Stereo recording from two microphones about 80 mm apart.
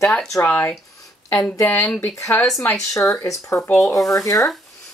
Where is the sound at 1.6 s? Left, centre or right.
Left.